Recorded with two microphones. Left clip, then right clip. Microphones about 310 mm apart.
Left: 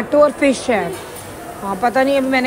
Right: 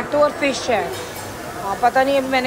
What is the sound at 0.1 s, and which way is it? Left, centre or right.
Speech, left.